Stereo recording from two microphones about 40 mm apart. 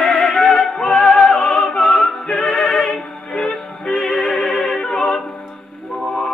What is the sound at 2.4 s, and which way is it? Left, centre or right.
Music, centre.